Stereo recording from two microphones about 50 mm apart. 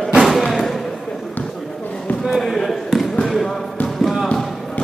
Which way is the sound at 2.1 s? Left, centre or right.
Centre.